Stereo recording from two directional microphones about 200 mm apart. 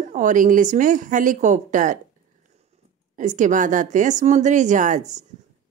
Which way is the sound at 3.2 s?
40° right (ahead or behind).